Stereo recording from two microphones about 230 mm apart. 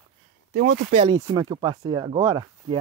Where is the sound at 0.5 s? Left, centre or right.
Right.